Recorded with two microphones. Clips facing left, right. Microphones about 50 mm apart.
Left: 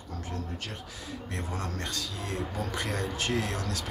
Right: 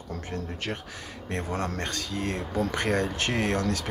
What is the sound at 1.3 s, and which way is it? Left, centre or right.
Speech, right.